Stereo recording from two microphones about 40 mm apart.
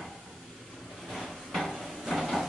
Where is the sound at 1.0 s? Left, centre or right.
Centre.